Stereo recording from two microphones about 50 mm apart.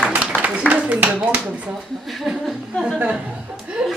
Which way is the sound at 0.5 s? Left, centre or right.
Centre.